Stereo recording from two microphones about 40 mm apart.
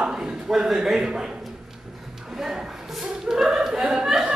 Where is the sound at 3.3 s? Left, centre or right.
Centre.